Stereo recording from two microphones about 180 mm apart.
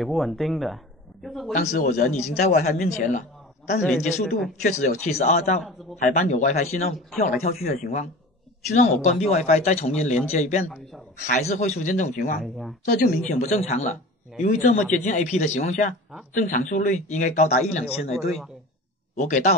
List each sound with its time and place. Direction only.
0.0 s speech: centre (ahead or behind)
1.5 s a man's voice: 45° left (ahead or behind)
3.8 s a man's voice: 5° left (ahead or behind)
4.6 s a man's voice: 40° left (ahead or behind)
13.4 s a man's voice: 40° left (ahead or behind)
19.1 s a man's voice: 45° left (ahead or behind)